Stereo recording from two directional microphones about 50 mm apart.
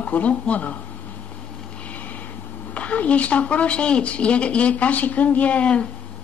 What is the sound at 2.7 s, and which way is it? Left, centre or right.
A woman's voice, left.